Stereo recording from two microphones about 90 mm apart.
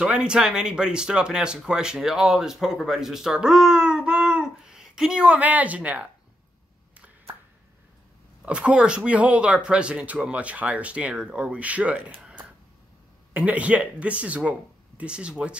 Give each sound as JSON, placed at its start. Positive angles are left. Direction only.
{"t": 0.0, "sound": "speech", "side_deg": -10}
{"t": 8.5, "sound": "speech", "side_deg": -15}
{"t": 12.2, "sound": "a sound", "side_deg": -10}
{"t": 13.3, "sound": "speech", "side_deg": -15}